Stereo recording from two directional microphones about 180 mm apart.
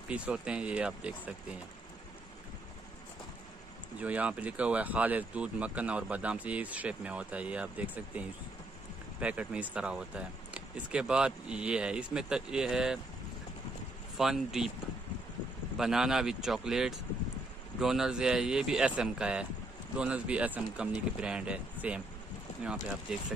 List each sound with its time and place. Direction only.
0.1 s speech: 5° right (ahead or behind)
4.0 s speech: 10° right (ahead or behind)
14.1 s speech: centre (ahead or behind)
15.8 s speech: centre (ahead or behind)